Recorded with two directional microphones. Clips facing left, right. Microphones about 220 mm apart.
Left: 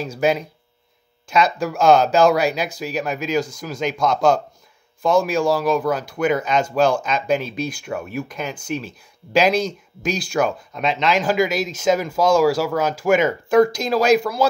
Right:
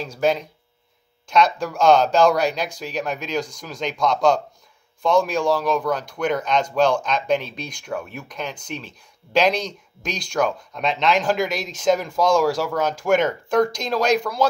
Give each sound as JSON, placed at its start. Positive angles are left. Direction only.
{"t": 0.0, "sound": "speech", "side_deg": 5}